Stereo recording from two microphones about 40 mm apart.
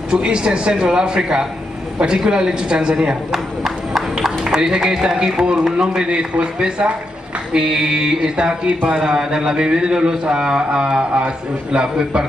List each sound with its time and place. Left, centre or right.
0.1 s a man's voice: centre
3.3 s a man's voice: centre
4.2 s a sound: centre
5.1 s a man's voice: right
6.0 s a man's voice: right
8.6 s speech: right
9.0 s a man's voice: centre